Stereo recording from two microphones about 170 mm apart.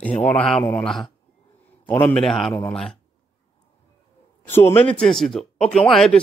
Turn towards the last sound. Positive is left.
turn(degrees=0)  # may be behind; listen again after turning